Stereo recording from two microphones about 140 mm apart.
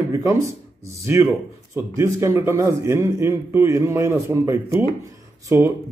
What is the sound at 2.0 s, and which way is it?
A man's voice, 20° right (ahead or behind).